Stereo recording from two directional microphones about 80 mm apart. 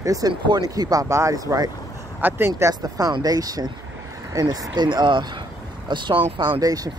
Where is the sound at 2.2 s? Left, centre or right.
Right.